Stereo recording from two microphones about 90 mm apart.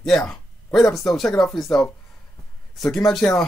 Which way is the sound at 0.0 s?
5° left (ahead or behind).